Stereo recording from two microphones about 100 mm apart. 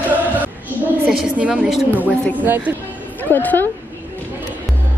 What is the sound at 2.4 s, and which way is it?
Speech, 20° right (ahead or behind).